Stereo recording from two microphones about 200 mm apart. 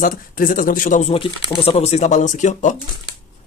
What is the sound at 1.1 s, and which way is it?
Speech, 25° left (ahead or behind).